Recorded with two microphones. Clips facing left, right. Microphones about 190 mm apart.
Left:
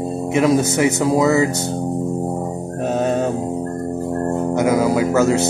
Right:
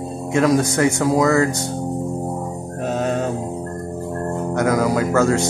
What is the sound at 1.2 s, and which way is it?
Speech, 5° left (ahead or behind).